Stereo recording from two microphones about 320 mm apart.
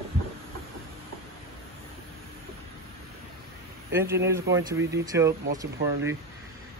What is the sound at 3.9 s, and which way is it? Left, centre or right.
Speech, centre.